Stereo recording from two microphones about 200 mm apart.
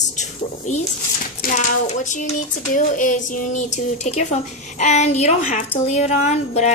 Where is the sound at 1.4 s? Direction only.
40° left (ahead or behind).